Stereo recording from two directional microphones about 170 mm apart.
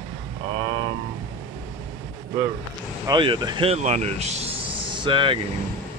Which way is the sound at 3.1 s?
25° right (ahead or behind).